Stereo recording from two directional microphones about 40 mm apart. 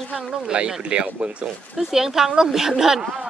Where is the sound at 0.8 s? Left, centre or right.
Right.